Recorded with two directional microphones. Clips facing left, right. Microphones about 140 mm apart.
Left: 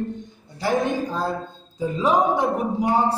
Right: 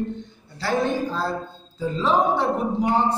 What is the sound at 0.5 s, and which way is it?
Speech, 15° left (ahead or behind).